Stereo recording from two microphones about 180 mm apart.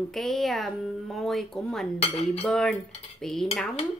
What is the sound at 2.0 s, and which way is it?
Cutlery, 35° left (ahead or behind).